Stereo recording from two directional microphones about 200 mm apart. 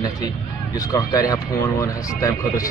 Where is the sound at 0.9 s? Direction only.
20° left (ahead or behind).